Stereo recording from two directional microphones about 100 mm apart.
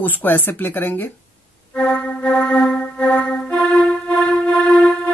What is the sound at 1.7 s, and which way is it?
Music, 15° left (ahead or behind).